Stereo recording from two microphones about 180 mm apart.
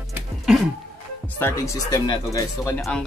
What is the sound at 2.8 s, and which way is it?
Speech, 5° left (ahead or behind).